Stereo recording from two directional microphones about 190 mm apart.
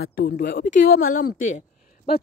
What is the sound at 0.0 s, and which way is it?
Speech, 55° left (ahead or behind).